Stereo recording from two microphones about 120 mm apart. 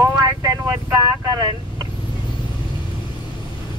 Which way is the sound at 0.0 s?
30° right (ahead or behind).